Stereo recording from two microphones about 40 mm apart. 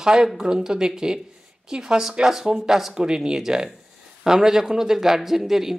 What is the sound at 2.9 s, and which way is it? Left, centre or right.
Speech, centre.